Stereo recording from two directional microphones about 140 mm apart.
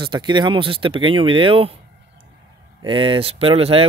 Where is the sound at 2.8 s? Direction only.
40° right (ahead or behind).